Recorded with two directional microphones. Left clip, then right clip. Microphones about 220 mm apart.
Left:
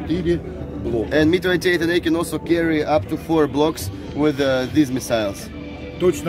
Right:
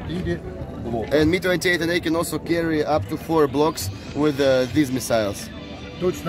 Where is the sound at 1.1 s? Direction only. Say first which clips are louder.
Left 1 dB; 35° right (ahead or behind).